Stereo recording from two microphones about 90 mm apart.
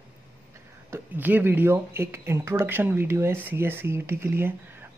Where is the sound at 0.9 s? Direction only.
20° right (ahead or behind).